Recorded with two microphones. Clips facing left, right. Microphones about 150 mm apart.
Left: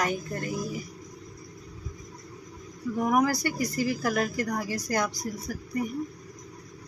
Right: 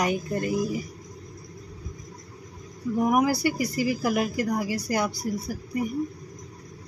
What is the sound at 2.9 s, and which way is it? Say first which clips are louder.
Speech: right 2 dB; 10° right (ahead or behind).